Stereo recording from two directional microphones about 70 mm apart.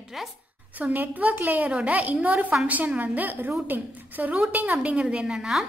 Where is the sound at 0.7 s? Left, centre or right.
Right.